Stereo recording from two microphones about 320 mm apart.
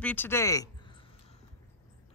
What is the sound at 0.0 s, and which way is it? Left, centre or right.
Speech, centre.